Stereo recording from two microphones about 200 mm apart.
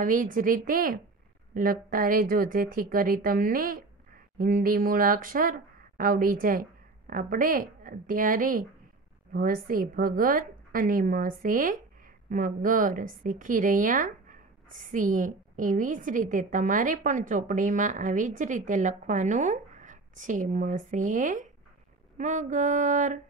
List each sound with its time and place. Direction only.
0.0 s a woman's voice: 40° right (ahead or behind)